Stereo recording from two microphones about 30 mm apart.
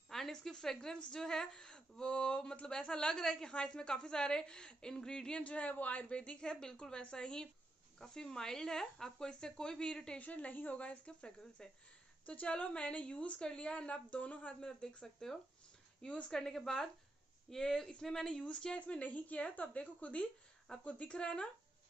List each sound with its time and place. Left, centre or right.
0.1 s speech: centre
1.7 s speech: left; by 3.5 s centre
3.5 s speech: left
5.4 s speech: left
6.0 s speech: left
6.4 s speech: left
10.1 s a woman's voice: left
12.3 s a woman's voice: left
13.4 s speech: left
14.6 s speech: left
18.0 s speech: centre
18.9 s a woman's voice: left
21.1 s speech: left